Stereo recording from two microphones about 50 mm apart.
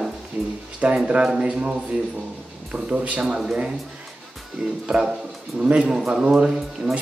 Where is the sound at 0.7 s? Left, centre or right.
Right.